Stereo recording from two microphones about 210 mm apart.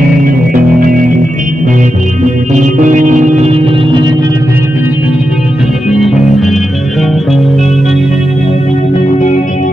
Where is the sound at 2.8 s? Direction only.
35° right (ahead or behind).